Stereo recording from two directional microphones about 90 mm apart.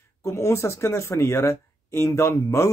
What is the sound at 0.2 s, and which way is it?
Speech, 35° left (ahead or behind).